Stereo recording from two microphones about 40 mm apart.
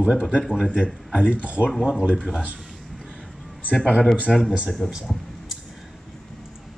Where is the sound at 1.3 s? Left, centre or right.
Right.